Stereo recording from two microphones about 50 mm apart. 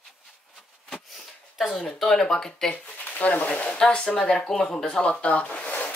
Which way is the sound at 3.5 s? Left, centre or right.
Centre.